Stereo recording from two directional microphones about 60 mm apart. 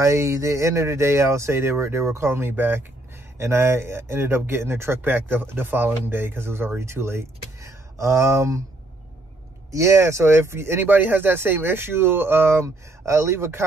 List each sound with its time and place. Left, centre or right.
0.0 s speech: right
9.7 s speech: right
10.9 s speech: right
12.6 s speech: right